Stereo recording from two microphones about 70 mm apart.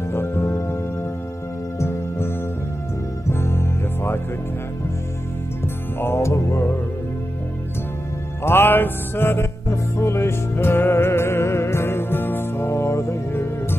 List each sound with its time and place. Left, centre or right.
0.1 s music: left
1.8 s music: left
5.9 s music: left
8.5 s music: left